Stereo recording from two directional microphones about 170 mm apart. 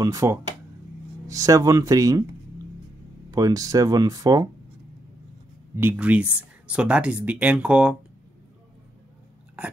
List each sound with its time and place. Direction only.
0.0 s speech: 20° right (ahead or behind)
3.3 s speech: 20° right (ahead or behind)
5.8 s speech: 10° right (ahead or behind)